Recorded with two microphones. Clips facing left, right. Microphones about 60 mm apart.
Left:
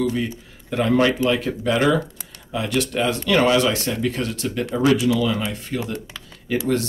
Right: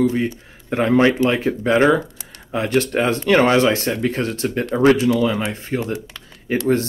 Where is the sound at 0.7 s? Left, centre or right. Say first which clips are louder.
Right 3 dB; right.